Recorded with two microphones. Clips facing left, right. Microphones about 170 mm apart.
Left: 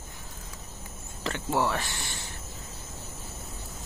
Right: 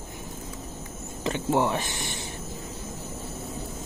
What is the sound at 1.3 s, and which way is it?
Speech, 20° right (ahead or behind).